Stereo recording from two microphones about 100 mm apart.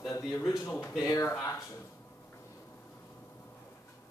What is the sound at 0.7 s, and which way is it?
Speech, 25° left (ahead or behind).